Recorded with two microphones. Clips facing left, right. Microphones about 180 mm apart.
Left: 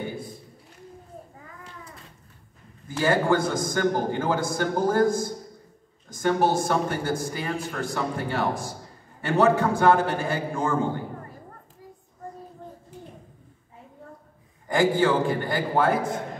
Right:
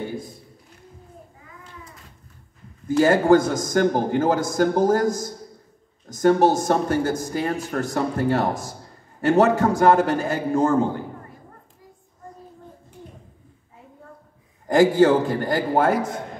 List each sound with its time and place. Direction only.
3.0 s a man's voice: 45° right (ahead or behind)
14.7 s a man's voice: 40° right (ahead or behind)